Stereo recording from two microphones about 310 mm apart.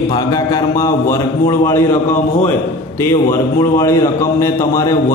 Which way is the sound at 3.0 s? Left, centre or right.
Centre.